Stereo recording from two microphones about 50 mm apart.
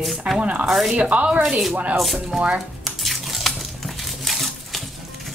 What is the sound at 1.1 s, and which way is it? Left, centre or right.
Speech, right.